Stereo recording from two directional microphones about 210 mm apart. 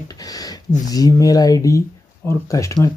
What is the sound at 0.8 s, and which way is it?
Speech, 15° left (ahead or behind).